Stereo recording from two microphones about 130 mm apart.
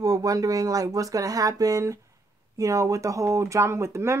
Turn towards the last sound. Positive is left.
turn(degrees=-20)  # may be behind; listen again after turning